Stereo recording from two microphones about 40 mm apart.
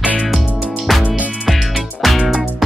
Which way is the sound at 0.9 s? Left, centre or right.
Centre.